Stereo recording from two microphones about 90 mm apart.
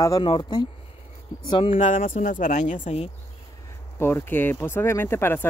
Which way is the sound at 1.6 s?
90° left.